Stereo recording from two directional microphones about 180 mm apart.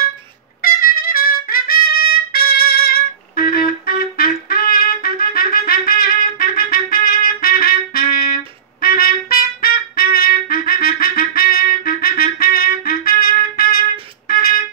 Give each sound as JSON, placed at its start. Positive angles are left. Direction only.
{"t": 0.6, "sound": "trumpet", "side_deg": 55}
{"t": 14.2, "sound": "music", "side_deg": 55}